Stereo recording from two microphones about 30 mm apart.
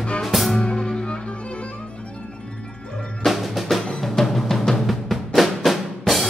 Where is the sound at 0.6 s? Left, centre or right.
Centre.